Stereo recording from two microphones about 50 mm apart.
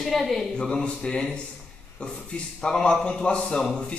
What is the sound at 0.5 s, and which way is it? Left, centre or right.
Speech, centre.